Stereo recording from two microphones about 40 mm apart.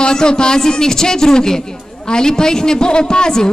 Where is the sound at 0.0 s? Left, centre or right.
Centre.